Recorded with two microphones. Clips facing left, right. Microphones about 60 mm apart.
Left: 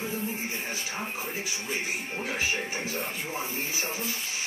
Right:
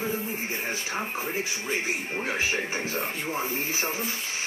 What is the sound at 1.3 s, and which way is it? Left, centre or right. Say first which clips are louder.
Speech: right 4 dB; right.